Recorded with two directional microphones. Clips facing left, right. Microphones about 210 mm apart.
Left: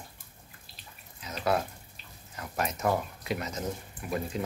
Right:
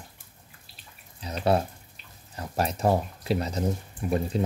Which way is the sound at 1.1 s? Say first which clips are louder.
Right 5 dB; 35° right (ahead or behind).